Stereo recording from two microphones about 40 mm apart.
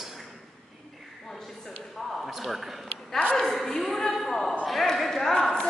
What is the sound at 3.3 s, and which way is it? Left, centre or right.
A man's voice, centre.